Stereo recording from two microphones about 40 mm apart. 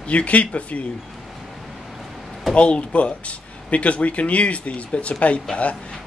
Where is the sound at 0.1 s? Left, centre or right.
Left.